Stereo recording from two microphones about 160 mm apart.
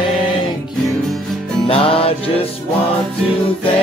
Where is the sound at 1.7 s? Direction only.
35° left (ahead or behind).